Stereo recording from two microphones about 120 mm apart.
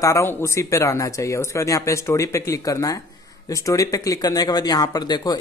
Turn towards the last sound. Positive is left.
turn(degrees=35)  # may be behind; listen again after turning